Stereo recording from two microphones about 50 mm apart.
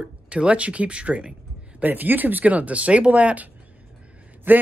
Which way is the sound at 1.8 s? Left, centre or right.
Right.